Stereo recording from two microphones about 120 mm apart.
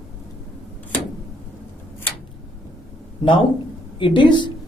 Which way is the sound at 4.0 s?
40° left (ahead or behind).